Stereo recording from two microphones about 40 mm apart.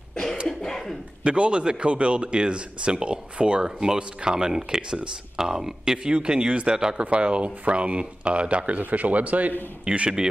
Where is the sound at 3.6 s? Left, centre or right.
Centre.